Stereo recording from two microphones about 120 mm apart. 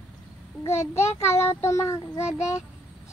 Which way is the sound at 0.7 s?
20° left (ahead or behind).